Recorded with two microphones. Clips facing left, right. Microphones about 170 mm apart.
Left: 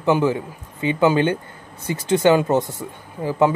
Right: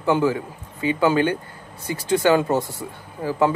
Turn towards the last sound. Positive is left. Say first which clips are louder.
# left 2 dB
turn(degrees=20)  # may be behind; listen again after turning